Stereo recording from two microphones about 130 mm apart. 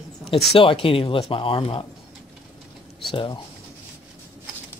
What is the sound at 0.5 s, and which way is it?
Speech, 45° left (ahead or behind).